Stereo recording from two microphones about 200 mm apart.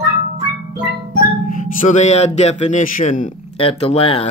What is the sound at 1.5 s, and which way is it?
Speech, 40° left (ahead or behind).